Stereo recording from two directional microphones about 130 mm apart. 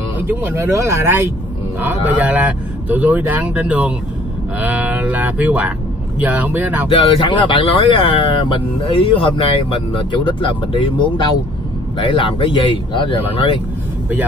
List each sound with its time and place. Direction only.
0.2 s speech: 15° right (ahead or behind)
6.9 s speech: 45° left (ahead or behind)